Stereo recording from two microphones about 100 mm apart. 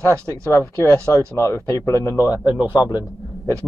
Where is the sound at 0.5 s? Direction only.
30° left (ahead or behind).